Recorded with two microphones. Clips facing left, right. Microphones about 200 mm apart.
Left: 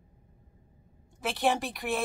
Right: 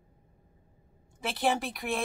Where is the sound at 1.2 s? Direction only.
Centre (ahead or behind).